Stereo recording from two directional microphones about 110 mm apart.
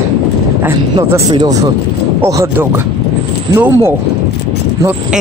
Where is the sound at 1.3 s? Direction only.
35° right (ahead or behind).